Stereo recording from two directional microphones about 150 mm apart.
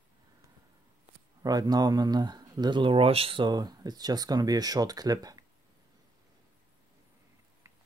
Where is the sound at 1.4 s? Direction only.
25° right (ahead or behind).